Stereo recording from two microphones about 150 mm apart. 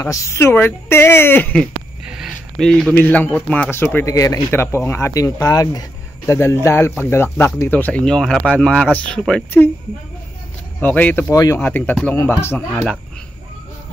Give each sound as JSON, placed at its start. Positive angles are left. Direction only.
{"t": 0.0, "sound": "speech", "side_deg": 20}
{"t": 2.0, "sound": "speech", "side_deg": 0}
{"t": 10.8, "sound": "speech", "side_deg": 10}